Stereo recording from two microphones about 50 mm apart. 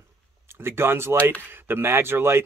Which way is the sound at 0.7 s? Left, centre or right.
Right.